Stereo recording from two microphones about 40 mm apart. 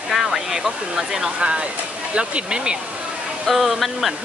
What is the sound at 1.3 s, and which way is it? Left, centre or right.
Speech, right.